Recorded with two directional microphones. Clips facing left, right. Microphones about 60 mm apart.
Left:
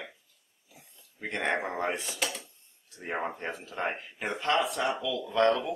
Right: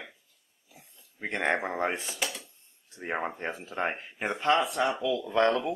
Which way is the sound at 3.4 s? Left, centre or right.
Centre.